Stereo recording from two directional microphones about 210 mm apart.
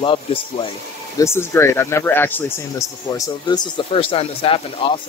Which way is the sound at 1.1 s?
10° left (ahead or behind).